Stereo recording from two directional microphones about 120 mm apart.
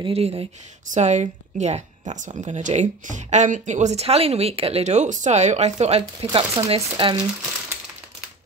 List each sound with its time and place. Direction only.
0.0 s speech: 55° right (ahead or behind)
0.9 s speech: 75° right (ahead or behind)
6.3 s speech: 50° right (ahead or behind)